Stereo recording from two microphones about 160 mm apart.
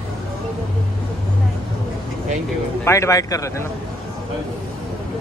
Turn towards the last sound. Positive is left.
turn(degrees=20)  # may be behind; listen again after turning